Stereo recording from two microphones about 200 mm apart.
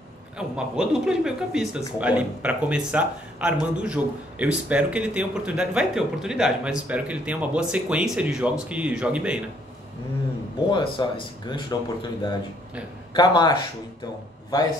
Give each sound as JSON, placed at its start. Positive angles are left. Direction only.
{"t": 0.4, "sound": "speech", "side_deg": -5}
{"t": 10.7, "sound": "speech", "side_deg": 25}